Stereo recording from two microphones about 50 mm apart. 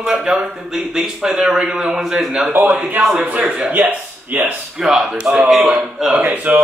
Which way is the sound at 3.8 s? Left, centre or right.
Right.